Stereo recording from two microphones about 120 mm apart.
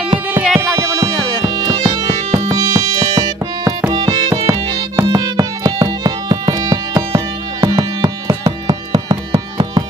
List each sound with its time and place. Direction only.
0.4 s music: centre (ahead or behind)
0.7 s music: 30° right (ahead or behind)